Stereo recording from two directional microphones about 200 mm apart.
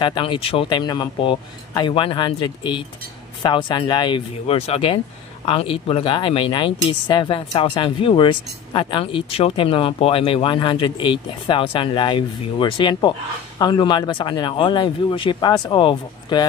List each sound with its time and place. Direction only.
0.0 s speech: 25° left (ahead or behind)